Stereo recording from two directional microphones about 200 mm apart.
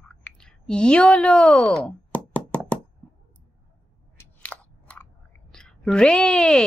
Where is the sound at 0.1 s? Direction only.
5° left (ahead or behind).